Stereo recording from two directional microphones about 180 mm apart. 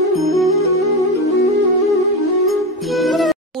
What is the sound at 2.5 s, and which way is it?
Music, centre (ahead or behind).